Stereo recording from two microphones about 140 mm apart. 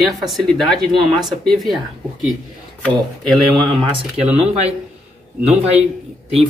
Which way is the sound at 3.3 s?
5° left (ahead or behind).